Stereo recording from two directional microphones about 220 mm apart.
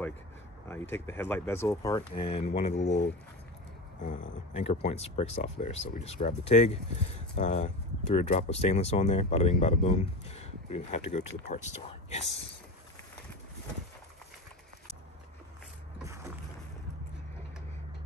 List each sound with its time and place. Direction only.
0.7 s speech: 10° left (ahead or behind); by 2.9 s 30° left (ahead or behind)
4.0 s speech: 35° left (ahead or behind)